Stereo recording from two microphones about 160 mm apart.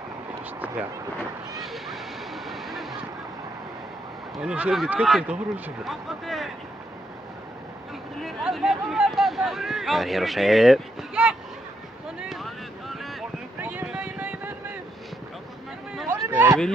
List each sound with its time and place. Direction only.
1.6 s vehicle: centre (ahead or behind)
4.4 s speech: 5° right (ahead or behind)
8.2 s speech: centre (ahead or behind)
12.2 s boat: centre (ahead or behind)
13.6 s a sound: 10° right (ahead or behind)
16.1 s a sound: 15° right (ahead or behind)